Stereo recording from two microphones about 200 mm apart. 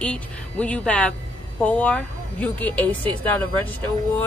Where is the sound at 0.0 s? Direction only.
5° left (ahead or behind).